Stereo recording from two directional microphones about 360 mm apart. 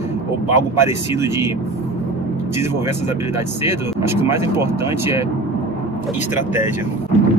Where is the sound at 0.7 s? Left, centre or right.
Centre.